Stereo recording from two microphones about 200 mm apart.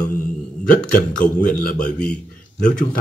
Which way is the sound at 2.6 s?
40° left (ahead or behind).